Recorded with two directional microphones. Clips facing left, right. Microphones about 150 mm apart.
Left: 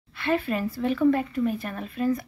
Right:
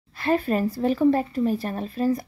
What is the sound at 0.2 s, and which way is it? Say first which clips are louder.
Speech: right 3 dB; 40° right (ahead or behind).